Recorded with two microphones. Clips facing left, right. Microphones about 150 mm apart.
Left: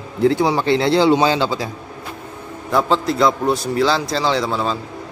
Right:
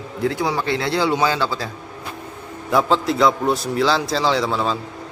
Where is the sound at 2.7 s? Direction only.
Centre (ahead or behind).